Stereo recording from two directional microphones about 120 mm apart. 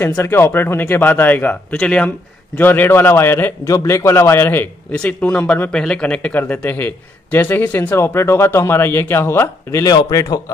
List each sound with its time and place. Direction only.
0.0 s a man's voice: 20° left (ahead or behind)
9.8 s speech: 30° left (ahead or behind)